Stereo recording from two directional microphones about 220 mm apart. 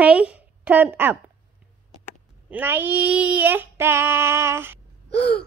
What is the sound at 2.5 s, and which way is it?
A woman's voice, 10° right (ahead or behind).